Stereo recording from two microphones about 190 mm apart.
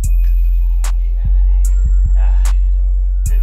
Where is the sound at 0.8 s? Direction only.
Centre (ahead or behind).